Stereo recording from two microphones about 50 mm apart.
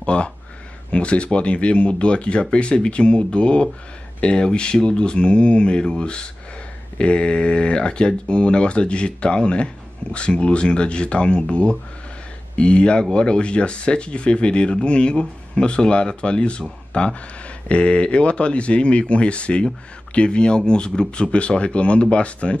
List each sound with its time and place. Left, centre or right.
0.0 s speech: left